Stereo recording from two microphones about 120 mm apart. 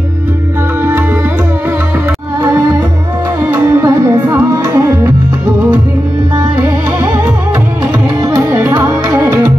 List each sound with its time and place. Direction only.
3.5 s music: 20° right (ahead or behind)
6.3 s music: 20° right (ahead or behind)
8.2 s music: 20° right (ahead or behind)